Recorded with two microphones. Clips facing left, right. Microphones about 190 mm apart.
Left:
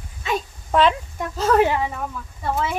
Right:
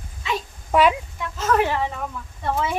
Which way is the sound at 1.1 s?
40° left (ahead or behind).